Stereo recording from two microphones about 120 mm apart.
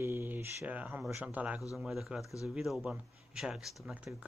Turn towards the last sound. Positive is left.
turn(degrees=-10)  # may be behind; listen again after turning